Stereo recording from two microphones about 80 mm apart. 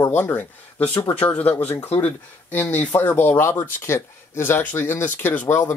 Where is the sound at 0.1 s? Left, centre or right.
Left.